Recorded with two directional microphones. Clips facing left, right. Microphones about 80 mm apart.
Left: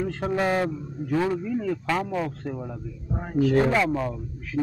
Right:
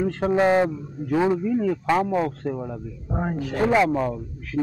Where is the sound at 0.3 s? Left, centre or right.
Right.